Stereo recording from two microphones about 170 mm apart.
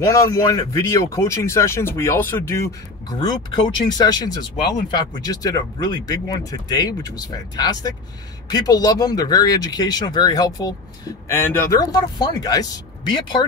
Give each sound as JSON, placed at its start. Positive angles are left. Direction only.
{"t": 0.0, "sound": "speech", "side_deg": 20}
{"t": 3.1, "sound": "speech", "side_deg": 25}